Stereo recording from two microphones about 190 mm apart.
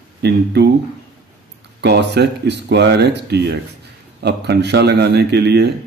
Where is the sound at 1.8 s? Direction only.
60° right (ahead or behind).